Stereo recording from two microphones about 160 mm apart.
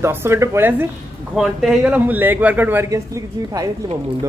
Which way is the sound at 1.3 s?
Centre (ahead or behind).